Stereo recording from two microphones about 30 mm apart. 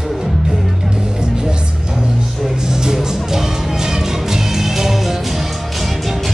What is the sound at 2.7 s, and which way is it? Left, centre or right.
Music, right.